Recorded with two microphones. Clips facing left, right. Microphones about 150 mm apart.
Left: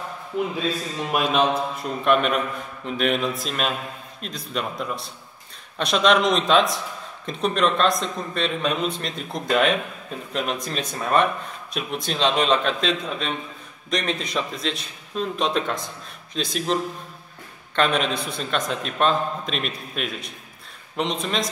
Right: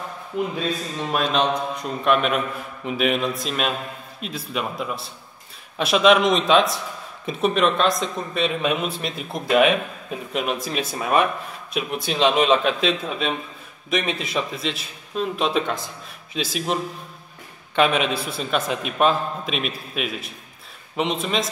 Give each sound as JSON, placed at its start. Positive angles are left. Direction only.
{"t": 1.1, "sound": "a man's voice", "side_deg": 10}
{"t": 17.7, "sound": "a man's voice", "side_deg": -5}